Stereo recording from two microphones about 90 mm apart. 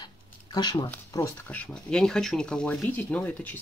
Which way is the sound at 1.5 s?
15° left (ahead or behind).